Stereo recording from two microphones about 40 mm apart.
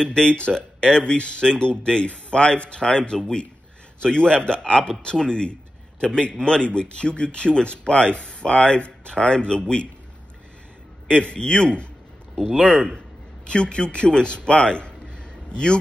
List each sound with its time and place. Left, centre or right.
0.0 s a man's voice: left
11.1 s a man's voice: left
12.4 s speech: centre
12.6 s a man's voice: left